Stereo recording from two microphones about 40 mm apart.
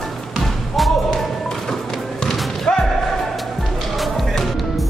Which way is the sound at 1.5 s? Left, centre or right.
Centre.